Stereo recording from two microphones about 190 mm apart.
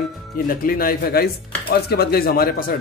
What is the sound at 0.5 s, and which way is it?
Speech, 50° left (ahead or behind).